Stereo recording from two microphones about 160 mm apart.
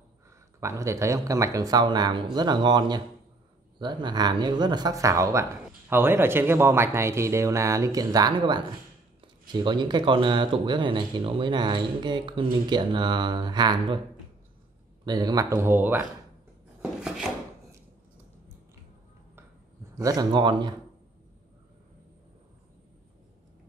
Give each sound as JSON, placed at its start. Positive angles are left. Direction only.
{"t": 0.6, "sound": "speech", "side_deg": -20}
{"t": 15.0, "sound": "speech", "side_deg": -25}
{"t": 20.0, "sound": "speech", "side_deg": -25}